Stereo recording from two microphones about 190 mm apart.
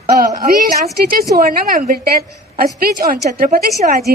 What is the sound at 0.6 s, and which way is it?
A woman's voice, 50° right (ahead or behind).